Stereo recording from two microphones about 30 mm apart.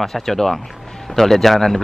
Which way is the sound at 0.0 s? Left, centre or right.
Centre.